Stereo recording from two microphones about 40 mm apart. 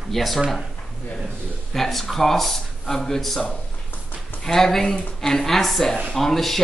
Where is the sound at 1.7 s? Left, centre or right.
Centre.